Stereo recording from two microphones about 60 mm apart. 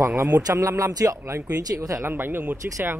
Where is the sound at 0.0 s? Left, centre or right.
Right.